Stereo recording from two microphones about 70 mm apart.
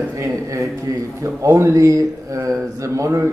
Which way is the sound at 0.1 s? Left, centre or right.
Right.